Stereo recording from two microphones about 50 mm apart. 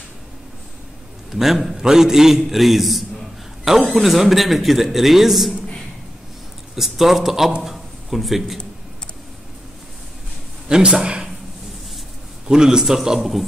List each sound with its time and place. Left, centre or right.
1.3 s a man's voice: centre
6.7 s a man's voice: centre
7.6 s a sound: centre
10.7 s a man's voice: centre
12.4 s a man's voice: centre